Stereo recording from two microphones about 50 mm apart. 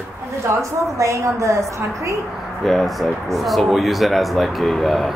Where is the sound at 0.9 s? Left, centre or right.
Right.